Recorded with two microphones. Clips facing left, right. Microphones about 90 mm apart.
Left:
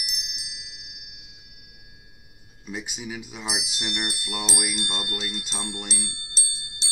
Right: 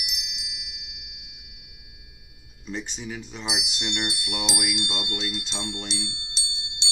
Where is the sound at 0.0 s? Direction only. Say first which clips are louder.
Right 1 dB; 35° left (ahead or behind).